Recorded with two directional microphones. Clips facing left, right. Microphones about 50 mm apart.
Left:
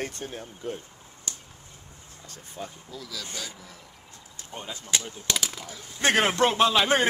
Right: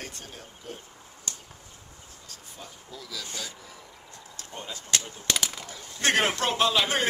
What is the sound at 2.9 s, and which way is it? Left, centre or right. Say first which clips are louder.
Speech: right 1 dB; centre.